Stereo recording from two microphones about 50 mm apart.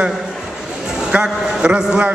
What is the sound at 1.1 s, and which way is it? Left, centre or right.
Speech, centre.